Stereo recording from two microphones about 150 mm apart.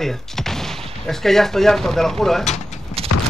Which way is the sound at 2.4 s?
50° left (ahead or behind).